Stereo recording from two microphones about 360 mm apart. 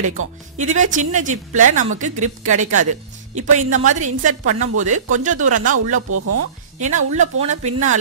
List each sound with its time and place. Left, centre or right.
0.6 s speech: centre
6.0 s speech: right
6.8 s speech: right